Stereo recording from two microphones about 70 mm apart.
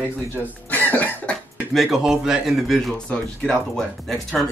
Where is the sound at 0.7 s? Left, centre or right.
Left.